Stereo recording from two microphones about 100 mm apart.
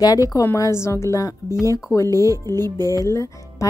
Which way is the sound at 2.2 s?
35° right (ahead or behind).